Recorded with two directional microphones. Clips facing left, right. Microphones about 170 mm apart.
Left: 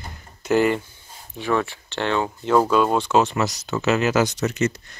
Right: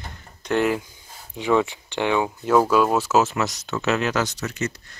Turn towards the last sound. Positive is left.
turn(degrees=20)  # may be behind; listen again after turning